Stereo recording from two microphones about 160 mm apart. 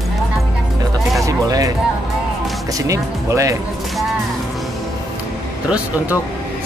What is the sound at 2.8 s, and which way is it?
Speech, 20° right (ahead or behind).